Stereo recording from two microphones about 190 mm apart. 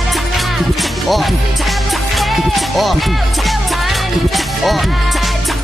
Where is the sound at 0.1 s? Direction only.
Centre (ahead or behind).